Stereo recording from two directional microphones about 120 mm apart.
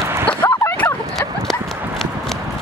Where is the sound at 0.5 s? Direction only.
15° left (ahead or behind).